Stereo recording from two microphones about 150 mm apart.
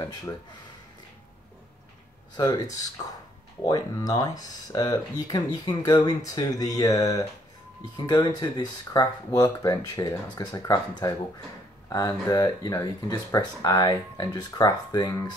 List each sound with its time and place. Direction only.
0.0 s speech: 20° left (ahead or behind)
2.3 s speech: 25° left (ahead or behind)